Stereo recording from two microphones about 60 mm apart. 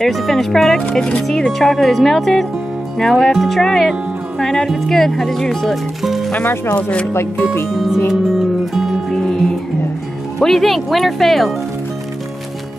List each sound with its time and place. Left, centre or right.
0.0 s speech: centre
6.4 s speech: left
6.7 s speech: centre
7.7 s speech: centre
9.1 s music: centre
10.4 s speech: centre